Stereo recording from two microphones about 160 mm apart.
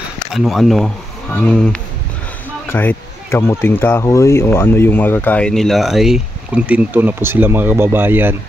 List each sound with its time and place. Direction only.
0.3 s speech: centre (ahead or behind)